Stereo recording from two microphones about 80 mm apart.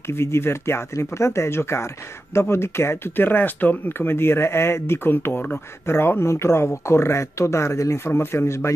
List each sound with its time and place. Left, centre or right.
0.0 s speech: left